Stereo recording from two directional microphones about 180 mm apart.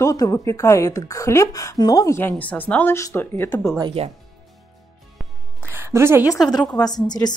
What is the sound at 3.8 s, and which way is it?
Speech, 30° right (ahead or behind).